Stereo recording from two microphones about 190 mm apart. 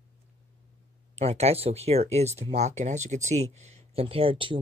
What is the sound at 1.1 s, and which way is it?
Speech, 35° right (ahead or behind).